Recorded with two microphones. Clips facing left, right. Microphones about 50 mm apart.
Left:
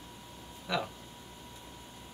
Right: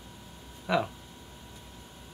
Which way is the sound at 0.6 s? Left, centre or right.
Centre.